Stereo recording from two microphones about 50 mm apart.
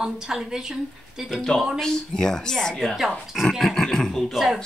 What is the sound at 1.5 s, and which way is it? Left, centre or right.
A woman's voice, centre.